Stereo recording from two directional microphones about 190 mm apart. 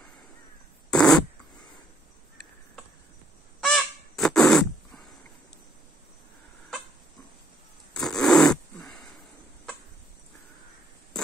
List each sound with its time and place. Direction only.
0.8 s fart: 5° left (ahead or behind)
3.6 s goose: 5° left (ahead or behind)
7.9 s a sound: 5° left (ahead or behind)